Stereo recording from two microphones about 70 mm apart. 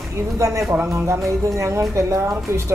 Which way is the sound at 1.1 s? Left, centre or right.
Right.